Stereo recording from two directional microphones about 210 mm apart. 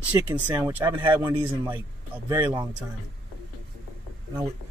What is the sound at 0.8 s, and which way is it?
A man's voice, 20° right (ahead or behind).